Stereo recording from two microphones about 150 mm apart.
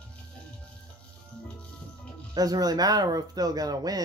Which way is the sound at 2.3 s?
25° right (ahead or behind).